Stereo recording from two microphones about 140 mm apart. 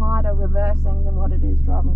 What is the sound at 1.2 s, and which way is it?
Music, 15° right (ahead or behind).